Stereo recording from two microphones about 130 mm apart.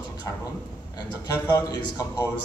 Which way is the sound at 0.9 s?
30° left (ahead or behind).